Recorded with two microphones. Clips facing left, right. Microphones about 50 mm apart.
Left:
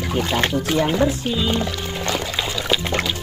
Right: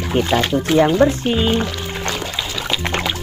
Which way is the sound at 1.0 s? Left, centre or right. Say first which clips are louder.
Right 5 dB; right.